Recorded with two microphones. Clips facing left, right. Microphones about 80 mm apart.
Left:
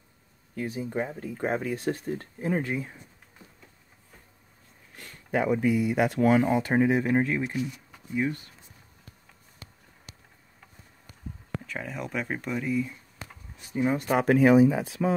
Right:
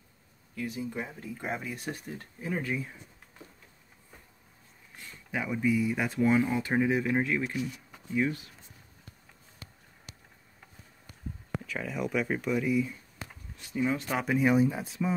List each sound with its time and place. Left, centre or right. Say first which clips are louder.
0.8 s speech: left 6 dB; left
4.9 s speech: left 7 dB; left
6.7 s speech: left 3 dB; left
7.3 s speech: left 2 dB; left
7.9 s speech: even; centre
11.5 s a sound: left 1 dB; centre
11.8 s speech: right 4 dB; centre
13.7 s speech: left 3 dB; left
14.1 s speech: left 11 dB; left
14.4 s speech: left 6 dB; left